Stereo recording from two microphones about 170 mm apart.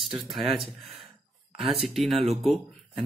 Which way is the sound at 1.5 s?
30° right (ahead or behind).